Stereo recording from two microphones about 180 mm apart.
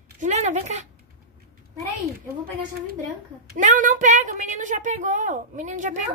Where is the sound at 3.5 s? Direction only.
45° right (ahead or behind).